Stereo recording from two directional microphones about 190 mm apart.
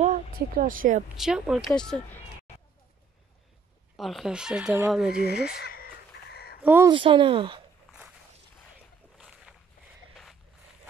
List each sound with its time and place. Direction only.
0.0 s speech: 45° right (ahead or behind)
1.0 s speech: 5° right (ahead or behind)
3.9 s speech: centre (ahead or behind)
5.2 s speech: 60° left (ahead or behind)
6.1 s a sound: 60° left (ahead or behind)
6.6 s speech: 10° right (ahead or behind)
6.9 s speech: 25° right (ahead or behind)
9.2 s walk: 5° right (ahead or behind)